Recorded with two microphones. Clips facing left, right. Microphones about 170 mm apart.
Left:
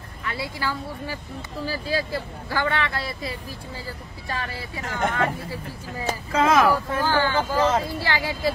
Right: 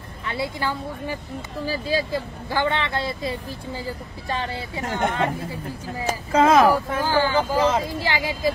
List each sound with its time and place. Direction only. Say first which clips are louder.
0.3 s speech: right 3 dB; 25° right (ahead or behind)
6.3 s speech: right 3 dB; 25° right (ahead or behind)